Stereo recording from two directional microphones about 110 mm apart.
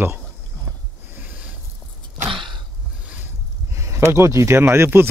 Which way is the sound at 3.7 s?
25° right (ahead or behind).